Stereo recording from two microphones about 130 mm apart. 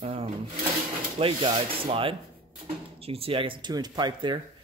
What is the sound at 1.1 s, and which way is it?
Speech, 40° right (ahead or behind).